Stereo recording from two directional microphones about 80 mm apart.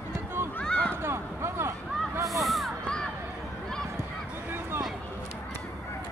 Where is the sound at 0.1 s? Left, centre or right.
Right.